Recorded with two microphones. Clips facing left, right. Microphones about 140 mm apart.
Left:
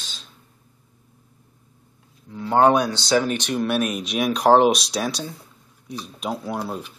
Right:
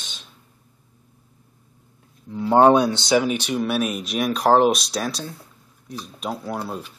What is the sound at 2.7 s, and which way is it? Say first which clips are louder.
Speech: right 3 dB; 25° right (ahead or behind).